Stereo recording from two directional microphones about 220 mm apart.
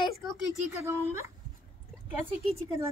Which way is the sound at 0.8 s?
10° right (ahead or behind).